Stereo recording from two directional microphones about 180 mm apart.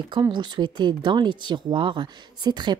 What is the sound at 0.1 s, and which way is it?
Speech, 25° right (ahead or behind).